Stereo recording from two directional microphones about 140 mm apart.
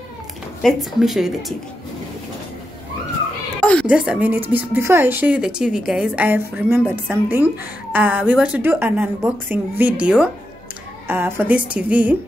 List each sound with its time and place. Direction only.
0.6 s speech: centre (ahead or behind)
3.8 s speech: 5° right (ahead or behind)